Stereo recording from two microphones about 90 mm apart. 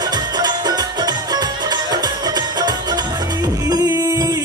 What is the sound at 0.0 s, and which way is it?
Music, 50° right (ahead or behind).